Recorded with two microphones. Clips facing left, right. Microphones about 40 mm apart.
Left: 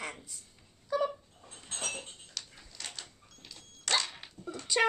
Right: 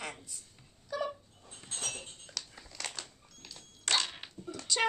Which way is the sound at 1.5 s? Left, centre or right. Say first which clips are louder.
Left 2 dB; left.